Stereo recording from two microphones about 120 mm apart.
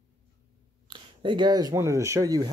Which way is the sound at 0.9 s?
40° right (ahead or behind).